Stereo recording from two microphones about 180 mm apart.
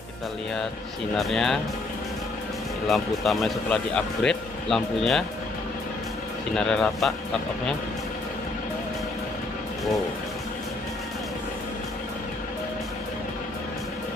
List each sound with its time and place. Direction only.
1.1 s speech: centre (ahead or behind)
2.9 s speech: centre (ahead or behind)
6.5 s speech: 5° left (ahead or behind)